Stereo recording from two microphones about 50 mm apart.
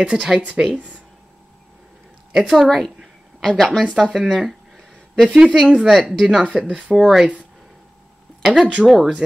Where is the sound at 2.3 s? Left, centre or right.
Centre.